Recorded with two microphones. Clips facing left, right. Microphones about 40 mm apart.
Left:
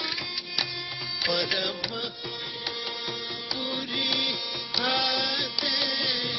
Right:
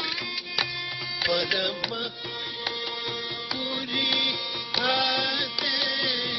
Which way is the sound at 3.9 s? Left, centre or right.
Centre.